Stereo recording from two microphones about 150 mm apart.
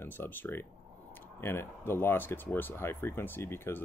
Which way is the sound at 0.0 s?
15° left (ahead or behind).